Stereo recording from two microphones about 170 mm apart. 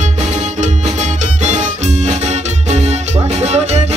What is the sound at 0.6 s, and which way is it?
Music, 45° right (ahead or behind).